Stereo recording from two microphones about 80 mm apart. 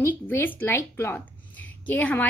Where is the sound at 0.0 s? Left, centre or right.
Left.